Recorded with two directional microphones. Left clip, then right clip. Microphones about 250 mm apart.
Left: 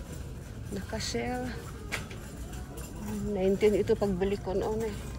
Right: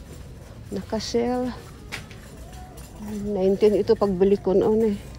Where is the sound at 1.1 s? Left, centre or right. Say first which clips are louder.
Right 11 dB; right.